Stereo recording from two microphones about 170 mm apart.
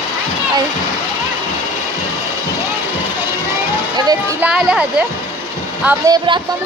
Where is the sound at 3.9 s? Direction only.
20° right (ahead or behind).